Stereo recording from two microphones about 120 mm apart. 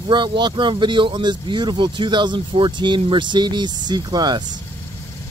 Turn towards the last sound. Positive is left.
turn(degrees=-35)  # may be behind; listen again after turning